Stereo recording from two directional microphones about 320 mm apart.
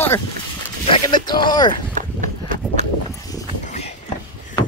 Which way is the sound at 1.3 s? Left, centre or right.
Centre.